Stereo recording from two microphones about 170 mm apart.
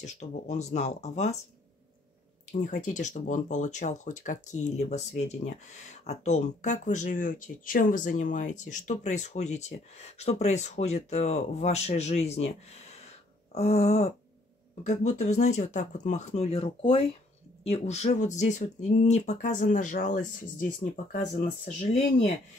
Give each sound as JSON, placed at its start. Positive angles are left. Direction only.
{"t": 0.0, "sound": "speech", "side_deg": 45}
{"t": 2.5, "sound": "speech", "side_deg": 45}